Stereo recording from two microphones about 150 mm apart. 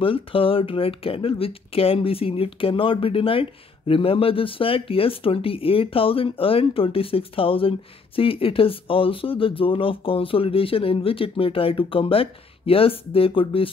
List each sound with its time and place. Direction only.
0.0 s speech: 35° left (ahead or behind)